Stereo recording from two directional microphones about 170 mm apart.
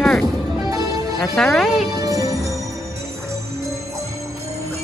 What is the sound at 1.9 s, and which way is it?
Music, 20° right (ahead or behind).